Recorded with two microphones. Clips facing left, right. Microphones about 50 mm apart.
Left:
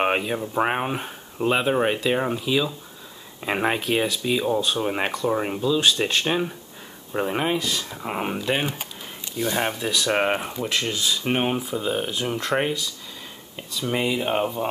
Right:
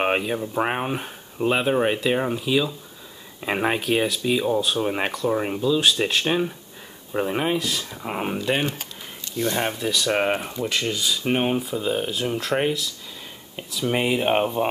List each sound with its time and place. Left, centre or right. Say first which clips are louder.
0.0 s speech: even; centre
13.9 s speech: right 2 dB; right